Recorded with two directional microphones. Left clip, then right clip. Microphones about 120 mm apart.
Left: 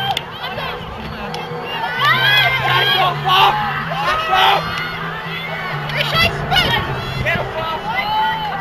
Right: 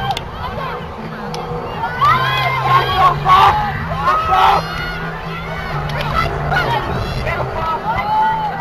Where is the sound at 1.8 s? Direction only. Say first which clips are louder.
Right 1 dB; 25° left (ahead or behind).